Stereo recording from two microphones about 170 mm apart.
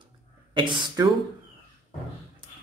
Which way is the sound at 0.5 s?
30° right (ahead or behind).